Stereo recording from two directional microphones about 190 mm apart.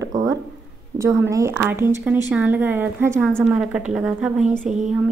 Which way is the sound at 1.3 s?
15° right (ahead or behind).